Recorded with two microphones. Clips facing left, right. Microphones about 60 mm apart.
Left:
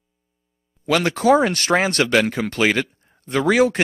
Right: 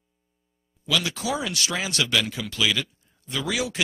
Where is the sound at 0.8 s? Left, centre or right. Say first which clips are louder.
Left 10 dB; left.